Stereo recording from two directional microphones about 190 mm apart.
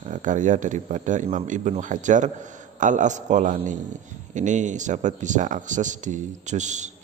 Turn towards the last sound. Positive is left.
turn(degrees=-40)  # may be behind; listen again after turning